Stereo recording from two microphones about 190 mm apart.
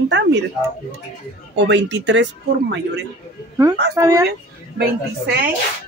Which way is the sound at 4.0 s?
15° right (ahead or behind).